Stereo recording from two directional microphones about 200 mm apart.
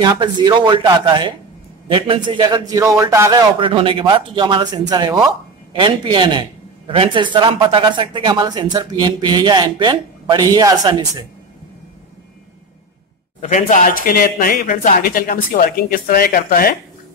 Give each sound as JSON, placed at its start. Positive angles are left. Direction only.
{"t": 0.0, "sound": "speech", "side_deg": -20}
{"t": 13.4, "sound": "speech", "side_deg": 40}